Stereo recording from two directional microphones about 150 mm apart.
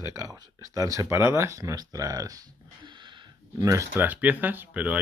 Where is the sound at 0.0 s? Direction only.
25° right (ahead or behind).